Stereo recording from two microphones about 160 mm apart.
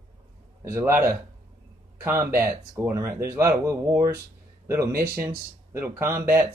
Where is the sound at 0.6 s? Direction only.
15° right (ahead or behind).